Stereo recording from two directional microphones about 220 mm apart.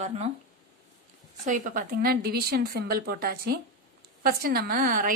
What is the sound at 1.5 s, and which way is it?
A woman's voice, 35° right (ahead or behind).